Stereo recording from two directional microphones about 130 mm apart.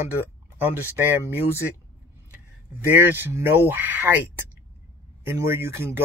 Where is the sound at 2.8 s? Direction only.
15° right (ahead or behind).